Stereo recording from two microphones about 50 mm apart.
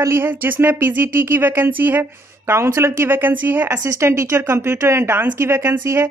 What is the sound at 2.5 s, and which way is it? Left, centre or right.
Speech, right.